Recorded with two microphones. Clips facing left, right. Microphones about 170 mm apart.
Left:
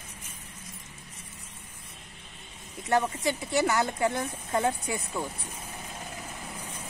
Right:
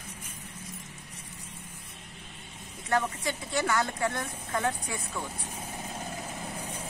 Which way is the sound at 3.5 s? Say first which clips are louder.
Left 2 dB; 20° left (ahead or behind).